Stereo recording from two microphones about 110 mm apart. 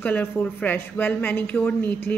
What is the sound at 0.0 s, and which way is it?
A woman's voice, 15° left (ahead or behind).